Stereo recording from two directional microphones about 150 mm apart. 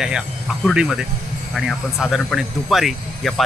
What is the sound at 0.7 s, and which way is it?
Speech, centre (ahead or behind).